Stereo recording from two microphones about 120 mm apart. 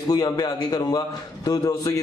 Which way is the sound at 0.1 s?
35° left (ahead or behind).